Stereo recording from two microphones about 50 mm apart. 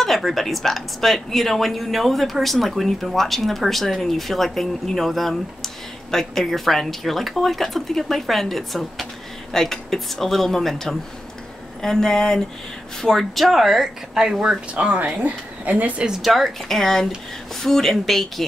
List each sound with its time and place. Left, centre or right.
0.0 s speech: centre
14.7 s speech: right
16.2 s speech: centre